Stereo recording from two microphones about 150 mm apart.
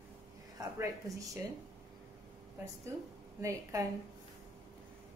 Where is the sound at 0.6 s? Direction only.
20° right (ahead or behind).